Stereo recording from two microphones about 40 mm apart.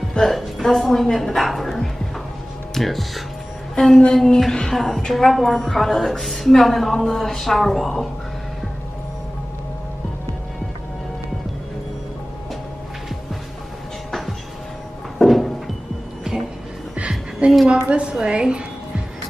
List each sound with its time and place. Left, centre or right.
0.2 s a woman's voice: centre
4.1 s a sound: centre
4.7 s a woman's voice: centre
15.1 s music: centre
17.6 s a woman's voice: right